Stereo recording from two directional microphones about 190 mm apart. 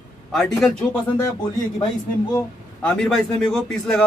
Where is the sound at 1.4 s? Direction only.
20° left (ahead or behind).